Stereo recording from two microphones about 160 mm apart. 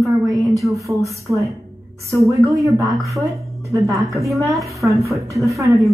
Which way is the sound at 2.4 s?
Centre (ahead or behind).